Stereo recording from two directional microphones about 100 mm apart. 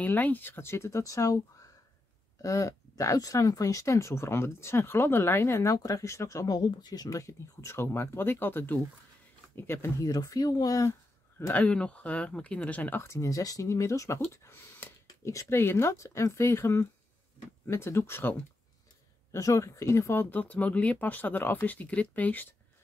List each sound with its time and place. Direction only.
0.0 s speech: 15° left (ahead or behind); by 1.4 s 35° left (ahead or behind)
2.4 s speech: 35° left (ahead or behind)
10.0 s speech: 35° left (ahead or behind)
11.6 s speech: 10° left (ahead or behind)
19.3 s speech: 35° left (ahead or behind); by 22.5 s 15° left (ahead or behind)